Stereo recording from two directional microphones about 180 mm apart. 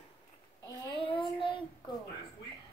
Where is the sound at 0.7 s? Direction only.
25° left (ahead or behind).